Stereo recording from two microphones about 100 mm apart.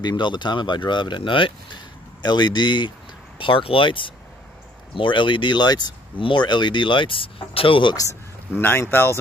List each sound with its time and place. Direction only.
0.0 s speech: 50° left (ahead or behind)
7.9 s speech: 35° left (ahead or behind)
8.5 s speech: 20° left (ahead or behind)